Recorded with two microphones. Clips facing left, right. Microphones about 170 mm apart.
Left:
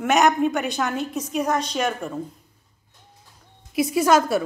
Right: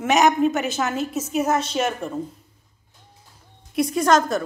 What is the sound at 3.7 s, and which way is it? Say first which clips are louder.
Speech: even; 5° left (ahead or behind).